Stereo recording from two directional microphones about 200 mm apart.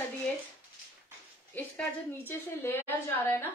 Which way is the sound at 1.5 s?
10° left (ahead or behind).